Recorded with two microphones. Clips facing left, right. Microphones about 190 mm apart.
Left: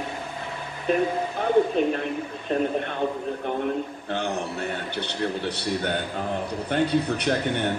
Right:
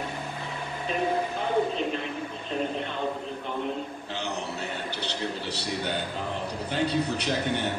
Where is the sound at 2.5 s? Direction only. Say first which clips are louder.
Left 6 dB; 55° left (ahead or behind).